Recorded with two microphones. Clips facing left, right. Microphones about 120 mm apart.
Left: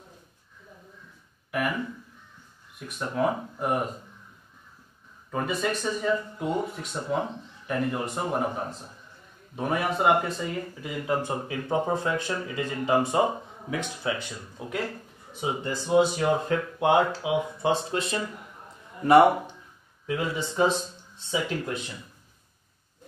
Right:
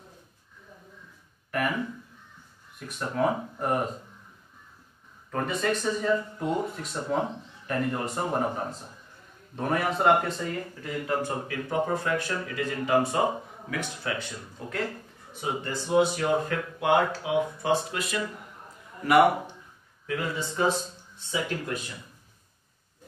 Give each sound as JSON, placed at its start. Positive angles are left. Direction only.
{"t": 2.9, "sound": "speech", "side_deg": 10}
{"t": 5.3, "sound": "speech", "side_deg": 5}
{"t": 20.1, "sound": "speech", "side_deg": 20}